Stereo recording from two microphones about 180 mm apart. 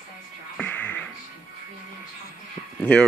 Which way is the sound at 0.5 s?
10° left (ahead or behind).